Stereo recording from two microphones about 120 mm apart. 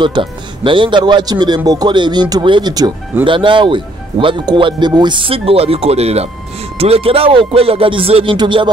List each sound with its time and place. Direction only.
0.0 s speech: 45° right (ahead or behind)